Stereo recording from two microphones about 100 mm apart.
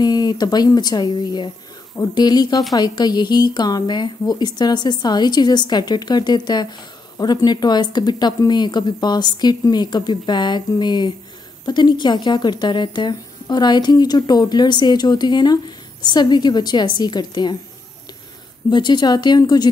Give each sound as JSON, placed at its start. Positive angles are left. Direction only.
{"t": 0.0, "sound": "speech", "side_deg": 45}
{"t": 18.7, "sound": "speech", "side_deg": 50}